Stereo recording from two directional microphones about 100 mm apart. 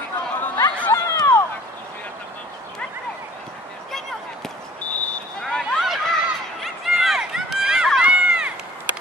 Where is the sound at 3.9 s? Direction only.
5° left (ahead or behind).